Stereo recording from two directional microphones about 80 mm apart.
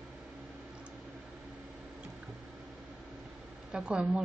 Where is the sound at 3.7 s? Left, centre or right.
Centre.